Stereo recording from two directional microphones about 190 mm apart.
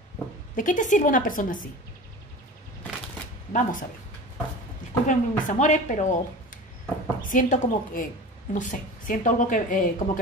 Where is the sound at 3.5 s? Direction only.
45° left (ahead or behind).